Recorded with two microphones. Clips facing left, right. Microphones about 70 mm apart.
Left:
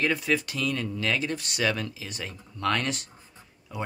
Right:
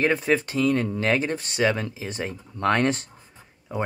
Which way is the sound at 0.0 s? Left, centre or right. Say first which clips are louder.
Right 4 dB; right.